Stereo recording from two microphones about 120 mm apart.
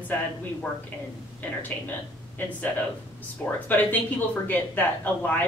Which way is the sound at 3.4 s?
15° left (ahead or behind).